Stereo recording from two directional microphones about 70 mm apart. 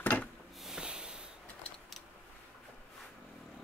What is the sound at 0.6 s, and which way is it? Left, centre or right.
Snort, centre.